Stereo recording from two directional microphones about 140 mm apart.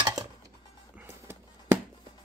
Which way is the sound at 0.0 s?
25° right (ahead or behind).